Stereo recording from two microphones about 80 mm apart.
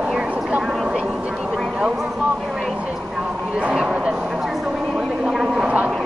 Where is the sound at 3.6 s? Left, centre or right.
Centre.